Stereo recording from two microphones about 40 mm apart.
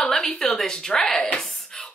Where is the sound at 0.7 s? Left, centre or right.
Centre.